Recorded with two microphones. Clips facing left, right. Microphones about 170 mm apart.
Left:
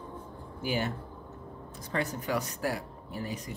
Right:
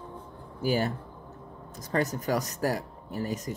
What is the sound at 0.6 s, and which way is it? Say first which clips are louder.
Speech: right 5 dB; 40° right (ahead or behind).